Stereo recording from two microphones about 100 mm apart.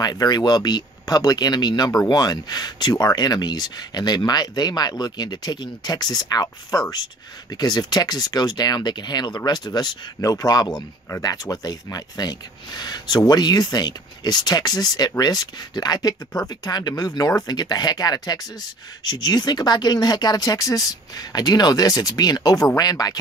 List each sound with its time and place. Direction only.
0.0 s speech: 45° left (ahead or behind)